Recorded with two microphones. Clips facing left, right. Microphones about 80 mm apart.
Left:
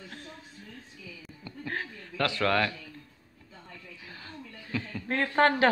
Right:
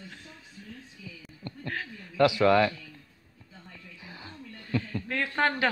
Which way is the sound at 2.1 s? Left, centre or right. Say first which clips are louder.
Right 6 dB; centre.